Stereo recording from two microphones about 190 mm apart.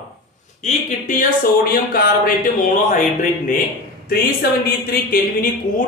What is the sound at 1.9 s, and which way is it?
Speech, 45° left (ahead or behind).